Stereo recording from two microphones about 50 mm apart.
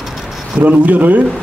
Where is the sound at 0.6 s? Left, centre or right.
Right.